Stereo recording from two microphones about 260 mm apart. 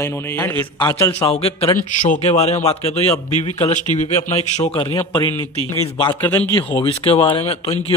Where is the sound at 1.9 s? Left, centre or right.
Left.